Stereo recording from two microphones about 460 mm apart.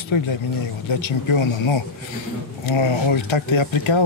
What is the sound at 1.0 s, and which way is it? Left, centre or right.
Speech, left.